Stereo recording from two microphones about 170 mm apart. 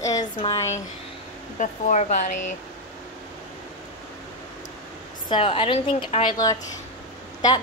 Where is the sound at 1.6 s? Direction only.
45° left (ahead or behind).